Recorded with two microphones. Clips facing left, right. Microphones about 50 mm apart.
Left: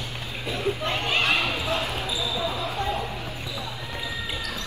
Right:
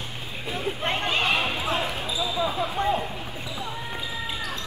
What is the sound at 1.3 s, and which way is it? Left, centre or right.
Basketball bounce, right.